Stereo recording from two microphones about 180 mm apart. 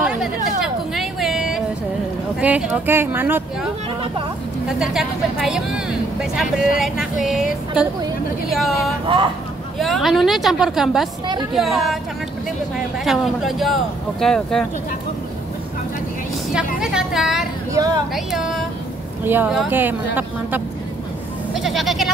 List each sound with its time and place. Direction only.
0.0 s a sound: 5° right (ahead or behind)
2.4 s a woman's voice: 5° right (ahead or behind)
4.6 s a woman's voice: centre (ahead or behind)
6.8 s a woman's voice: centre (ahead or behind)
9.0 s speech: 30° right (ahead or behind)
9.8 s a woman's voice: centre (ahead or behind)
13.0 s a woman's voice: centre (ahead or behind)
16.8 s a woman's voice: 5° right (ahead or behind)
17.7 s speech: 20° right (ahead or behind)
18.1 s a woman's voice: centre (ahead or behind)
21.5 s speech: centre (ahead or behind)